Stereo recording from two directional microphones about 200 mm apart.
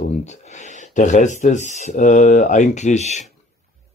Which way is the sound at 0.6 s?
35° left (ahead or behind).